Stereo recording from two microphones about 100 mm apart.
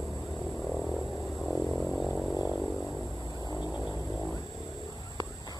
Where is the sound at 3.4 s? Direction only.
45° left (ahead or behind).